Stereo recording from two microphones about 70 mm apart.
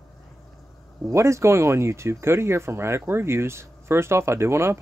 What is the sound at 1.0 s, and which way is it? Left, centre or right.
Speech, right.